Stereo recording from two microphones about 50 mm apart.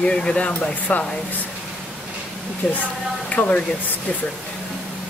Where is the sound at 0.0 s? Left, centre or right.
Centre.